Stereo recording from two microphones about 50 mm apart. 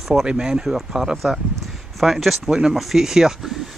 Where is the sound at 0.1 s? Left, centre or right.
Centre.